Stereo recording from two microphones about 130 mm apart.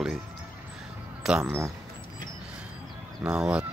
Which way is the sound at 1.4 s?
20° right (ahead or behind).